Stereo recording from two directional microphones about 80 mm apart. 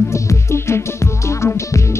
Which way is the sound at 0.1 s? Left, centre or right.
Left.